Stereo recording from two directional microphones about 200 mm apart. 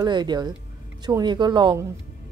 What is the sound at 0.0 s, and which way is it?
A woman's voice, 20° right (ahead or behind).